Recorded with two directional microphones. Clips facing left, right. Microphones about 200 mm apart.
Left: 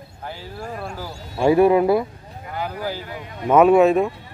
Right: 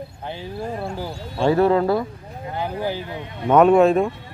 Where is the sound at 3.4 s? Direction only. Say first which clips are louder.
Even; 5° left (ahead or behind).